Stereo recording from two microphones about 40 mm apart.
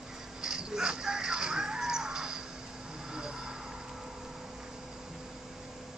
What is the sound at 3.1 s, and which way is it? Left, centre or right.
Vehicle, centre.